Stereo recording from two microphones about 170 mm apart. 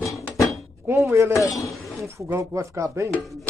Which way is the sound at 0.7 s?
15° right (ahead or behind).